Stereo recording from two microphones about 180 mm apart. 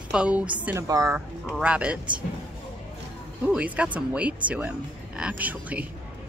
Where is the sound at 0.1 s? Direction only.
5° right (ahead or behind).